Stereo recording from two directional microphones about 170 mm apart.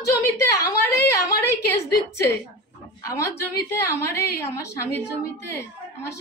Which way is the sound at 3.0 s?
20° left (ahead or behind).